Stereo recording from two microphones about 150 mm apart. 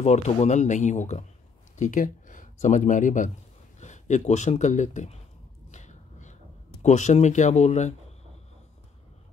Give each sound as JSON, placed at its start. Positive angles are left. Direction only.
{"t": 0.0, "sound": "speech", "side_deg": 45}
{"t": 5.7, "sound": "a sound", "side_deg": 50}
{"t": 6.8, "sound": "speech", "side_deg": 50}